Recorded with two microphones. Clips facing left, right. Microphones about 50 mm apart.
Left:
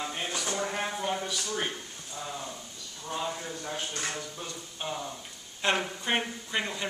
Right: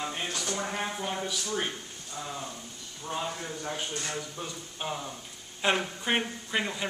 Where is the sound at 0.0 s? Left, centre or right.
Centre.